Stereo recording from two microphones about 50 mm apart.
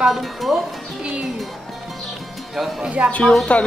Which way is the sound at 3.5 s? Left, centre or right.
Left.